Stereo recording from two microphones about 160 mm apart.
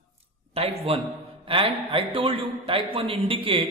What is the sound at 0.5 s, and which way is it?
A man's voice, 35° right (ahead or behind).